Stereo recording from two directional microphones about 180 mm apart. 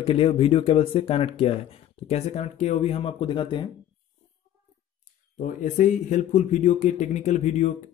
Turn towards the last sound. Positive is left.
turn(degrees=40)  # may be behind; listen again after turning